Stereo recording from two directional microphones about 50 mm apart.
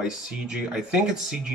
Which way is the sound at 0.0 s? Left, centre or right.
Centre.